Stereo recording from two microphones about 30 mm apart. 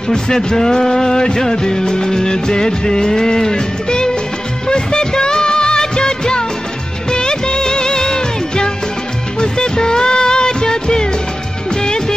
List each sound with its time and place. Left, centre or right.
0.1 s music: left
4.6 s music of bollywood: left
9.4 s music: left